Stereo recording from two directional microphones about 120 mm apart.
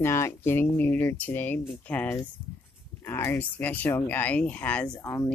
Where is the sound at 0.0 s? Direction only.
20° left (ahead or behind).